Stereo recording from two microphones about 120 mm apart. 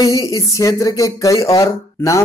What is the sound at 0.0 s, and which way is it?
Speech, 30° left (ahead or behind).